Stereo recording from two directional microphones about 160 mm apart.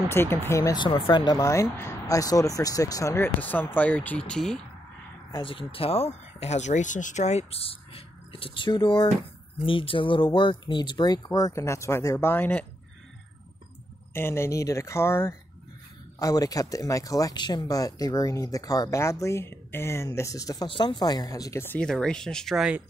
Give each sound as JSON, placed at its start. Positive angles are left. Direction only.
{"t": 0.1, "sound": "speech", "side_deg": 15}
{"t": 0.8, "sound": "speech", "side_deg": 35}
{"t": 5.3, "sound": "speech", "side_deg": 30}
{"t": 14.1, "sound": "speech", "side_deg": 15}
{"t": 21.7, "sound": "speech", "side_deg": 5}